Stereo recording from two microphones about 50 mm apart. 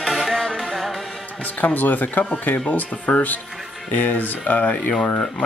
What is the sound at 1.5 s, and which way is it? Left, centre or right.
Speech, left.